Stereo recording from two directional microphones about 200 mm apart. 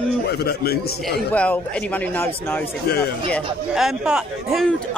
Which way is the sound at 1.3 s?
5° left (ahead or behind).